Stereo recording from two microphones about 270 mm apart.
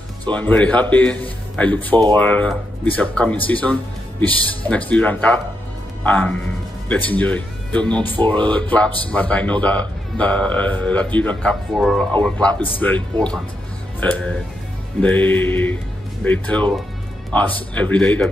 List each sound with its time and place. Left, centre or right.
0.3 s a man's voice: centre
12.7 s music: centre
13.9 s speech: centre
15.0 s music: centre
16.3 s a man's voice: centre